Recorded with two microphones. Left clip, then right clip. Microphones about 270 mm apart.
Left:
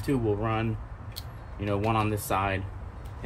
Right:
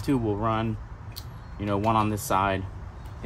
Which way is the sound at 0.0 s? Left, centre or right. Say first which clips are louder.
Right 2 dB; centre.